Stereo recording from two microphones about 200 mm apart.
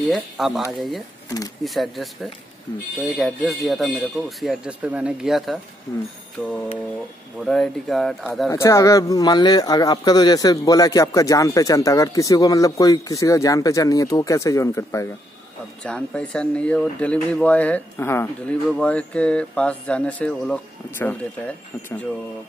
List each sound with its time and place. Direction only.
0.1 s speech: centre (ahead or behind)
3.1 s speech: centre (ahead or behind)
8.5 s speech: 15° left (ahead or behind)